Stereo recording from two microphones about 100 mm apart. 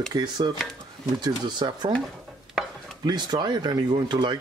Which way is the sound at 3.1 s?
45° right (ahead or behind).